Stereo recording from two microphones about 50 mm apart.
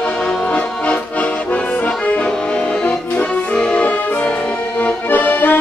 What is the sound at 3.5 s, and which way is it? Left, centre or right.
Music, left.